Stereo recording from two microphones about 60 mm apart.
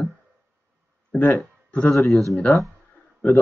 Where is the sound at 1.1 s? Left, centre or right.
Left.